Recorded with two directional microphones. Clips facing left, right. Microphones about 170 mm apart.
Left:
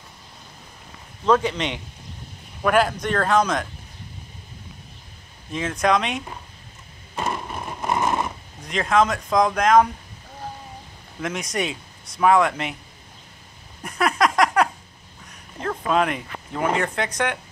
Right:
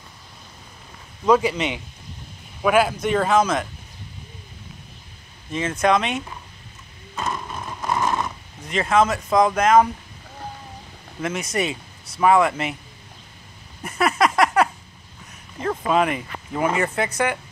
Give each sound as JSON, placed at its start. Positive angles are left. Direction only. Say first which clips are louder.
{"t": 1.2, "sound": "a man's voice", "louder": "right 2 dB", "side_deg": -10}
{"t": 5.5, "sound": "speech", "louder": "right 1 dB", "side_deg": 0}
{"t": 7.4, "sound": "a sound", "louder": "left 1 dB", "side_deg": 15}
{"t": 8.6, "sound": "speech", "louder": "right 1 dB", "side_deg": 0}
{"t": 11.1, "sound": "speech", "louder": "right 2 dB", "side_deg": 0}
{"t": 13.8, "sound": "a sound", "louder": "right 1 dB", "side_deg": -5}
{"t": 15.6, "sound": "speech", "louder": "right 1 dB", "side_deg": -5}